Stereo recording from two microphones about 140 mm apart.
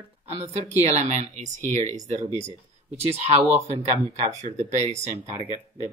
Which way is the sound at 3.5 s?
50° right (ahead or behind).